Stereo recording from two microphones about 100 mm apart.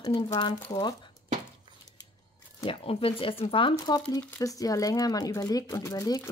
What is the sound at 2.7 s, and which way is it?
Speech, 70° left (ahead or behind).